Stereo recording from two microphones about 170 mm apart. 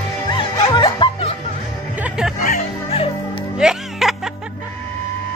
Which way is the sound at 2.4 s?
40° left (ahead or behind).